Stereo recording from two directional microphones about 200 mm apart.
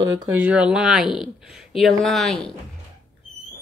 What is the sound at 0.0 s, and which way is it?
Speech, 20° right (ahead or behind).